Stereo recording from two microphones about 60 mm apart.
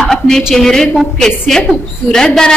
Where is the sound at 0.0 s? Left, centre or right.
Centre.